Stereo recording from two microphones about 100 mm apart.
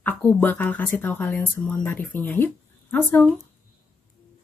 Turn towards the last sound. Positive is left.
turn(degrees=15)  # may be behind; listen again after turning